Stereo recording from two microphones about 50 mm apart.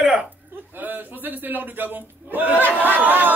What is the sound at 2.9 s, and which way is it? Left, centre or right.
Chatter, right.